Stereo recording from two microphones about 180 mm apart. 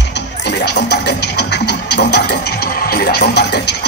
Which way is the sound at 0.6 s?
65° left (ahead or behind).